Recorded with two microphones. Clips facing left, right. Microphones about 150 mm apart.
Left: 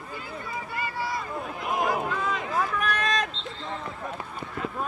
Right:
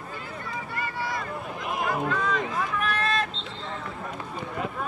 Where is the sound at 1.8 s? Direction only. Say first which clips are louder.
Right 4 dB; 5° left (ahead or behind).